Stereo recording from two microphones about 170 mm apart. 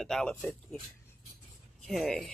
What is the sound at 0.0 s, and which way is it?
Music, centre (ahead or behind).